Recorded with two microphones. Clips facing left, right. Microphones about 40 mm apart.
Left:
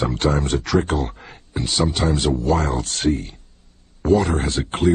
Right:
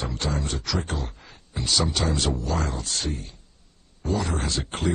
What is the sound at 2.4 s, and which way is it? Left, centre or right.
Speech, left.